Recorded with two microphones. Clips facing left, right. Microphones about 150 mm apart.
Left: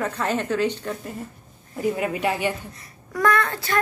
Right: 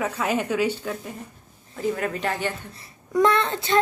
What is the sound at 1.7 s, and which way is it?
Speech, 15° left (ahead or behind).